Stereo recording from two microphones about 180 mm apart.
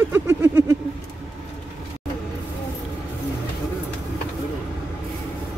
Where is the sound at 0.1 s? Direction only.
15° right (ahead or behind).